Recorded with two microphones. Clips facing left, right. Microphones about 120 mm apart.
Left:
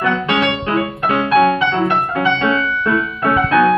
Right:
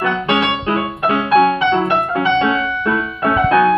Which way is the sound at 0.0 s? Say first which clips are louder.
Even; 20° right (ahead or behind).